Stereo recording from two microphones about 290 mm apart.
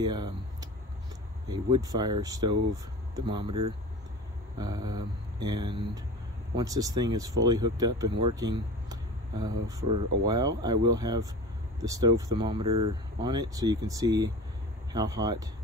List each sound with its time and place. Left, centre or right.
0.0 s speech: centre